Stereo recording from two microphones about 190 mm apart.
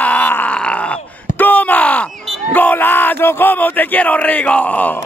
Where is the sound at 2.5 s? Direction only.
10° left (ahead or behind).